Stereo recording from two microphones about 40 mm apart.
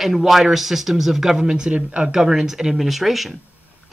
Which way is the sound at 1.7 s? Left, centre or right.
Right.